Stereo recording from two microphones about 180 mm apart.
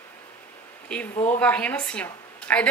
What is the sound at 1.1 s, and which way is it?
Speech, 35° left (ahead or behind).